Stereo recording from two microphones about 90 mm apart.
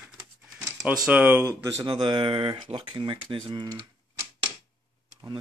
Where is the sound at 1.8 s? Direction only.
60° right (ahead or behind).